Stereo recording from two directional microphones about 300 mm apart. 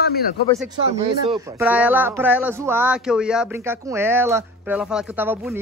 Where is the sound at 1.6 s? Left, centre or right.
Centre.